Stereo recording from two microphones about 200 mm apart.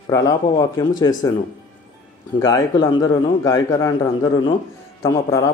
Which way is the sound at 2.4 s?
20° left (ahead or behind).